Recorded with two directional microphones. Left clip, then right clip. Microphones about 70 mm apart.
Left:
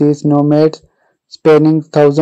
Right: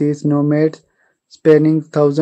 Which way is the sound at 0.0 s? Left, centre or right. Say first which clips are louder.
Left 5 dB; left.